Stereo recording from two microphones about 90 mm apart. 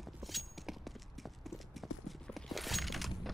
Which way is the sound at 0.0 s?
Centre (ahead or behind).